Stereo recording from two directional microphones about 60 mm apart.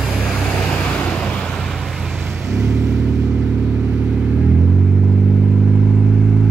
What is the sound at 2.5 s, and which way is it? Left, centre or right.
Vehicle, right.